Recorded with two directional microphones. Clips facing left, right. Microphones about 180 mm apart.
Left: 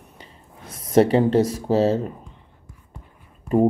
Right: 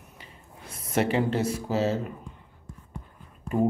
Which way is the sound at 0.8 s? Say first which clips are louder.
Left 8 dB; 35° left (ahead or behind).